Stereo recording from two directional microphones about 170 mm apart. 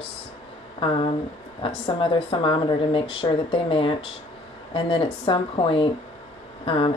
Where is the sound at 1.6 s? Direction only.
30° left (ahead or behind).